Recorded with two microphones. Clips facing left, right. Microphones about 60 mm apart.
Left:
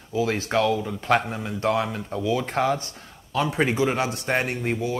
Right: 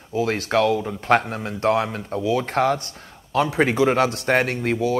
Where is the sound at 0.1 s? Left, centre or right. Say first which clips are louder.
Right 2 dB; right.